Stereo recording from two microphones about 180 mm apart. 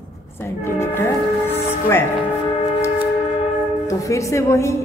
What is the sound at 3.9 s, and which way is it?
Speech, 15° left (ahead or behind).